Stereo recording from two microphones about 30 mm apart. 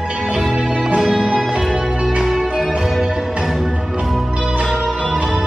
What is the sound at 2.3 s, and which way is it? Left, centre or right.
Music, centre.